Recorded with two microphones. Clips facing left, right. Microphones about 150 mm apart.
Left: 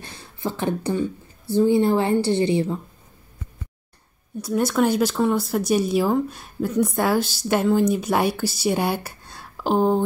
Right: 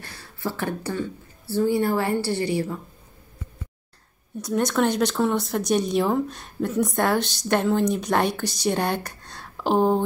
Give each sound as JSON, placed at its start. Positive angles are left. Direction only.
{"t": 0.0, "sound": "speech", "side_deg": 20}
{"t": 4.4, "sound": "speech", "side_deg": 5}